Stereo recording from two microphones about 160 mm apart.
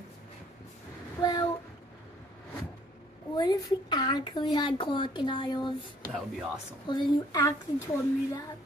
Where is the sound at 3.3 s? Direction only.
25° left (ahead or behind).